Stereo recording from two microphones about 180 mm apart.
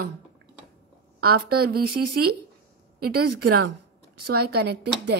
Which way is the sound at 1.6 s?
60° right (ahead or behind).